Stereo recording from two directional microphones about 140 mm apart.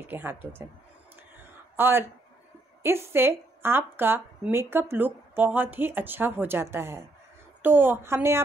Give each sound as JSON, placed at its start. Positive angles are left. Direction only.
{"t": 0.1, "sound": "speech", "side_deg": -15}
{"t": 1.8, "sound": "speech", "side_deg": -15}